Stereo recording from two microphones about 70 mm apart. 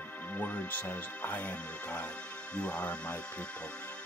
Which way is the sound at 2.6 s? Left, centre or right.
Centre.